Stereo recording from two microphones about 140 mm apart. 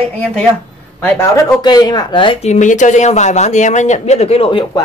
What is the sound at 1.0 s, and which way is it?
Speech, 15° left (ahead or behind).